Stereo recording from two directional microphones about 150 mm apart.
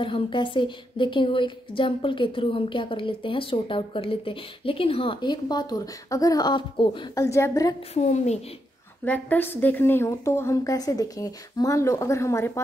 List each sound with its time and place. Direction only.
0.0 s a woman's voice: 35° left (ahead or behind)
7.2 s a woman's voice: 20° left (ahead or behind)
7.9 s a woman's voice: 45° left (ahead or behind)
9.0 s a woman's voice: 10° left (ahead or behind)